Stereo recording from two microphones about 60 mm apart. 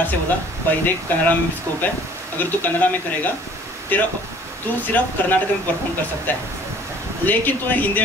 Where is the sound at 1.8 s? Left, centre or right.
Left.